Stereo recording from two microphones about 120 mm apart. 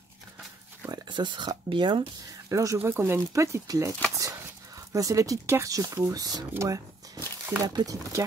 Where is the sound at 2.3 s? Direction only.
25° right (ahead or behind).